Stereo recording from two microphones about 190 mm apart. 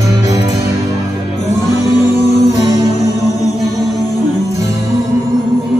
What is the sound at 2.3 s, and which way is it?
Music, 35° left (ahead or behind).